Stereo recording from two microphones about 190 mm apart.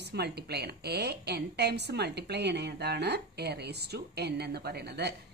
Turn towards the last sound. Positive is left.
turn(degrees=-60)  # may be behind; listen again after turning